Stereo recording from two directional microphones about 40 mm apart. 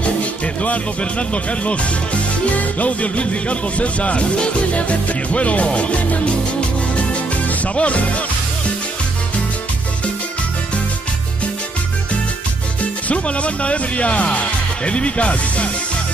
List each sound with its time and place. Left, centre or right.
0.6 s speech: left
7.4 s music: left
13.1 s speech: left